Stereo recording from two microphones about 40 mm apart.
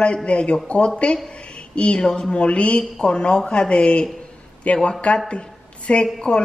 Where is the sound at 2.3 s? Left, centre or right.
Left.